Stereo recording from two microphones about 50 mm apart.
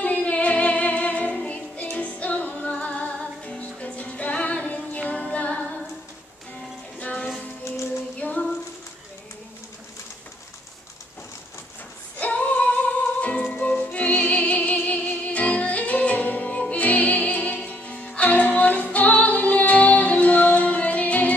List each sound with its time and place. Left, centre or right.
0.0 s music: left
5.1 s a capella: left
7.0 s music: left
12.2 s music: left